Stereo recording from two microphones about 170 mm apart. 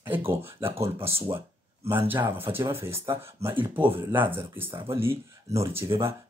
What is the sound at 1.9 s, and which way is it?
Speech, 10° right (ahead or behind).